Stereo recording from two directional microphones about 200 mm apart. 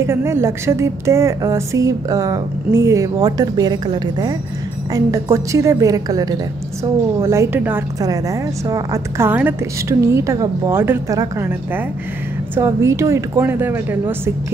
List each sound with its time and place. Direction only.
0.0 s a woman's voice: 15° right (ahead or behind)